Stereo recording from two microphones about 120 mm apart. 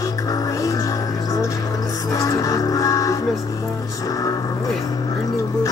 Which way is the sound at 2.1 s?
30° left (ahead or behind).